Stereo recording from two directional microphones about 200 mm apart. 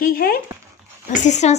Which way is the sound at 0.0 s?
45° left (ahead or behind).